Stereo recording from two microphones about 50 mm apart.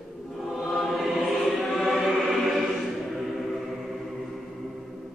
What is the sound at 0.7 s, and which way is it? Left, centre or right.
Choir, centre.